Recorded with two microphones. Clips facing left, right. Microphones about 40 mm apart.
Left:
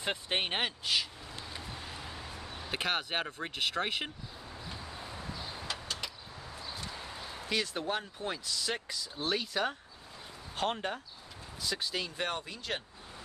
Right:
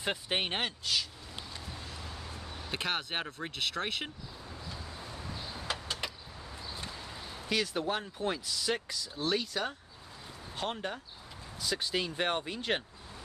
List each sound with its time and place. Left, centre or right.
0.0 s speech: centre
1.5 s a sound: centre
4.6 s vehicle: centre
5.7 s vehicle: centre
6.9 s a sound: centre
7.4 s speech: centre
11.6 s speech: centre
11.9 s speech: centre